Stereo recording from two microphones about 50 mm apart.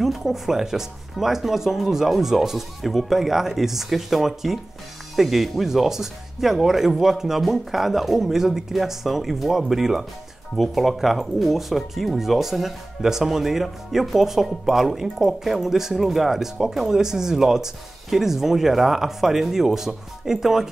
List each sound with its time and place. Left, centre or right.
0.0 s speech: centre